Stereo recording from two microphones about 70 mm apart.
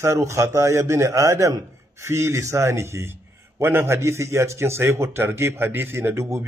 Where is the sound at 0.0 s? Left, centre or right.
Right.